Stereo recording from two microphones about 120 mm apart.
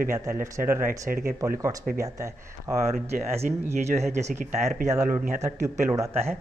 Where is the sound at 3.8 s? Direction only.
70° right (ahead or behind).